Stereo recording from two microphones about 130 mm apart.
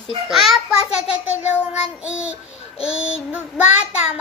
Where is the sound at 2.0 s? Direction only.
5° right (ahead or behind).